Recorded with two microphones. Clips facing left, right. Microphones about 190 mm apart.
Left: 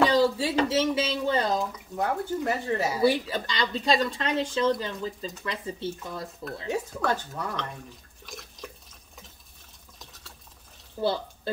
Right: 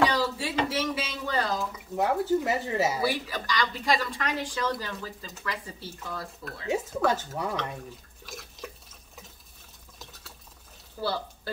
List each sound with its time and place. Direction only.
0.1 s speech: 25° left (ahead or behind)
2.0 s speech: 5° right (ahead or behind)
3.0 s speech: 25° left (ahead or behind)
7.0 s speech: 5° right (ahead or behind)
8.3 s drip: centre (ahead or behind)
11.0 s speech: 20° left (ahead or behind)